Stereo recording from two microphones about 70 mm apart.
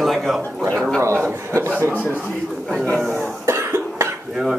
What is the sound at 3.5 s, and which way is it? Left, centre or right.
Cough, right.